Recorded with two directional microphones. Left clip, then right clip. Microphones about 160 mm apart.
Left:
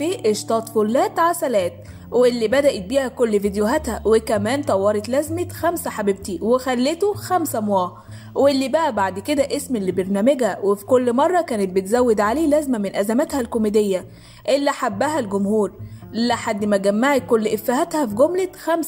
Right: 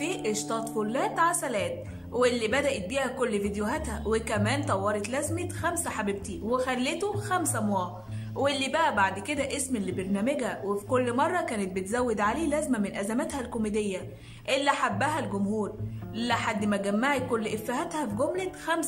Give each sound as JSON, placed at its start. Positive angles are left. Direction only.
{"t": 0.0, "sound": "a woman's voice", "side_deg": 35}